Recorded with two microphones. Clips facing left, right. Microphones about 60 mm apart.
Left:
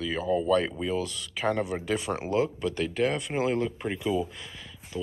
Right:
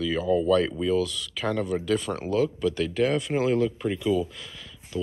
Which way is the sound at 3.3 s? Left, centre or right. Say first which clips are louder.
Right 4 dB; centre.